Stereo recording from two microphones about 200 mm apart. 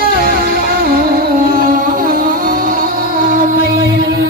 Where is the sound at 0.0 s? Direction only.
45° right (ahead or behind).